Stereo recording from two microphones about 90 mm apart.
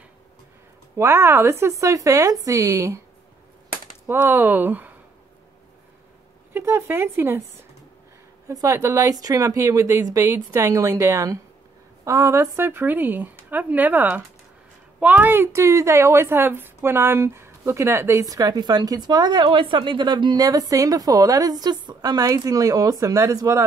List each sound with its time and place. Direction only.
0.9 s a woman's voice: 30° right (ahead or behind)
4.1 s a woman's voice: 25° right (ahead or behind)
6.5 s a woman's voice: 30° right (ahead or behind)
8.5 s a woman's voice: 35° right (ahead or behind)
18.3 s speech: 40° right (ahead or behind)
20.4 s a woman's voice: 40° right (ahead or behind)